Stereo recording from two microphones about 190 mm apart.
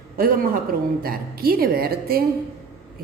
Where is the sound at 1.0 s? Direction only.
50° right (ahead or behind).